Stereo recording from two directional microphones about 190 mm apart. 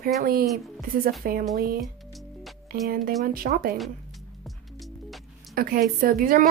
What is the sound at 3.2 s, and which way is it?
Speech, 50° right (ahead or behind).